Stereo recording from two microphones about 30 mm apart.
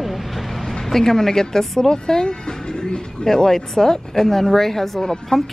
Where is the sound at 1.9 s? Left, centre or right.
Left.